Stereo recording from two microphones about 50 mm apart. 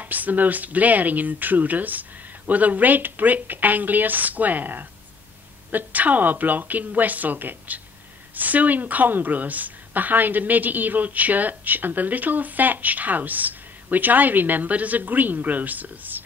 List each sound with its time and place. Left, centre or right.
0.0 s a woman's voice: right